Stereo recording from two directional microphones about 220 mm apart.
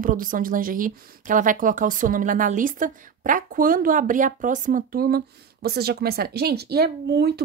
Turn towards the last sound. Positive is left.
turn(degrees=-50)  # may be behind; listen again after turning